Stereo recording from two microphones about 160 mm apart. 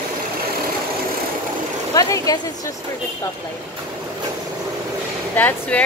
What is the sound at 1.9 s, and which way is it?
Speech, 20° left (ahead or behind).